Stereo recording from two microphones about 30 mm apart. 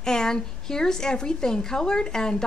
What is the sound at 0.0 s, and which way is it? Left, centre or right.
Speech, left.